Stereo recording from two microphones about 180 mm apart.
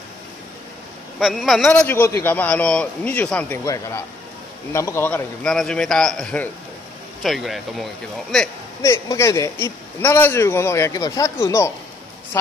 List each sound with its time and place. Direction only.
1.2 s a man's voice: centre (ahead or behind)
8.8 s a man's voice: 15° left (ahead or behind)